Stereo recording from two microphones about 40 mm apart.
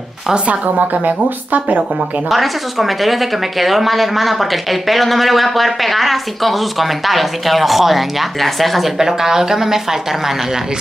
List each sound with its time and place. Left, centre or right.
0.5 s a woman's voice: right
2.2 s speech: centre
8.9 s a woman's voice: centre